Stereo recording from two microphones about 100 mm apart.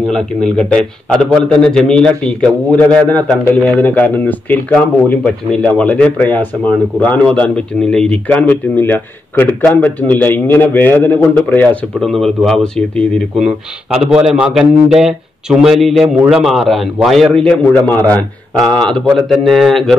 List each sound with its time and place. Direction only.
0.1 s a man's voice: 10° left (ahead or behind)
12.0 s a man's voice: centre (ahead or behind)
13.9 s a man's voice: 5° right (ahead or behind)
18.6 s a man's voice: 5° left (ahead or behind)